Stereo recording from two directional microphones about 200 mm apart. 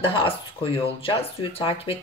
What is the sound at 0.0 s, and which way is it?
Speech, 25° left (ahead or behind).